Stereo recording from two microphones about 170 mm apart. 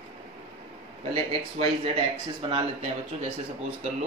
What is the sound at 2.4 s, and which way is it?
Speech, 30° right (ahead or behind).